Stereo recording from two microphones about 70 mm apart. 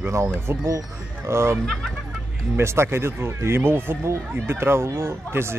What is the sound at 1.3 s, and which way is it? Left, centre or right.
Speech, right.